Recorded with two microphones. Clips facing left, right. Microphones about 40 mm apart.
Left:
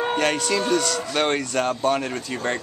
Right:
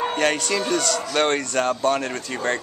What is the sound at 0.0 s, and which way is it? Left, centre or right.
Speech, centre.